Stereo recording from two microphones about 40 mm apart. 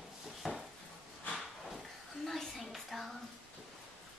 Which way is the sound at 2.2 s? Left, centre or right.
Centre.